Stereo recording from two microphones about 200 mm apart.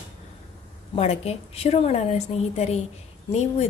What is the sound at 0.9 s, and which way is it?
A woman's voice, 30° left (ahead or behind).